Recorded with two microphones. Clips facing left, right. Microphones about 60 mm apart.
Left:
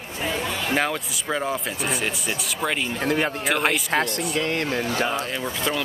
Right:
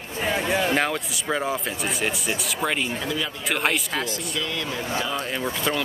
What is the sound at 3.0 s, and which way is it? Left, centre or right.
Speech, left.